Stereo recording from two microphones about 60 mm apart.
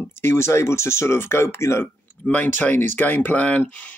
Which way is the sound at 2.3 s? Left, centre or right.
Left.